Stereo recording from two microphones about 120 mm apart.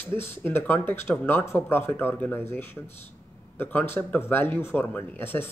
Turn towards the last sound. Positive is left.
turn(degrees=15)  # may be behind; listen again after turning